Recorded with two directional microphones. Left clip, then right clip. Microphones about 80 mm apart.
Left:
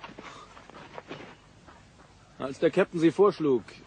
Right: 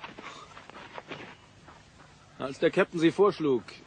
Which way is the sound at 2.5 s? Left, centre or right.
Centre.